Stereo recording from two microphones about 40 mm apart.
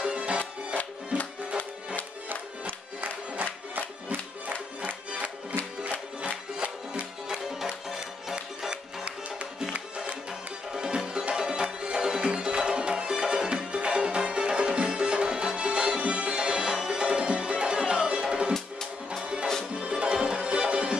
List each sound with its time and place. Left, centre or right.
0.0 s music: right
2.2 s music: right
6.9 s music: right
8.4 s music: right
10.7 s music: centre
19.8 s music: right